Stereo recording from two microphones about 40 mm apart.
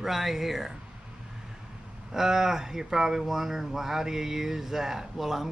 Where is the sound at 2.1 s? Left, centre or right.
Centre.